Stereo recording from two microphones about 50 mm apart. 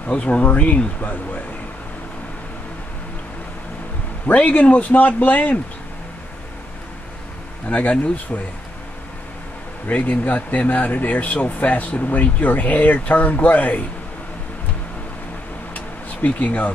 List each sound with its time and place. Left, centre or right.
0.0 s speech: left
4.3 s speech: left
7.7 s speech: left
9.8 s speech: left
15.7 s vehicle: left